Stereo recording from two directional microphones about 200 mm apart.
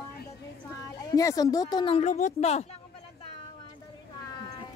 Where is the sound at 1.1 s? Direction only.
20° left (ahead or behind); by 2.6 s 35° left (ahead or behind).